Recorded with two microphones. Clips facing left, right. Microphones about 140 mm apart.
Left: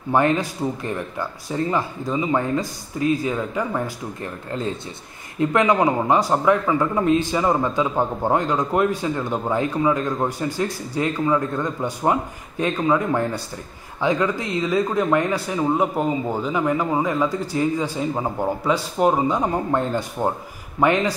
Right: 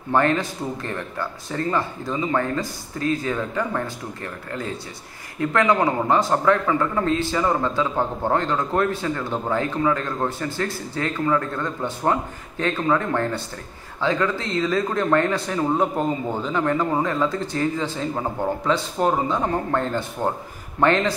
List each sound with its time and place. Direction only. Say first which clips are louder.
0.1 s a man's voice: left 1 dB; 15° left (ahead or behind)
5.4 s a man's voice: left 2 dB; 20° left (ahead or behind)